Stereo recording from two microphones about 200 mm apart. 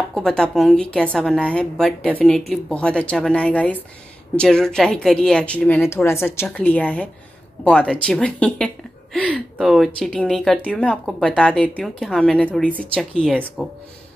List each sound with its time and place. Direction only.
0.1 s a woman's voice: 5° left (ahead or behind)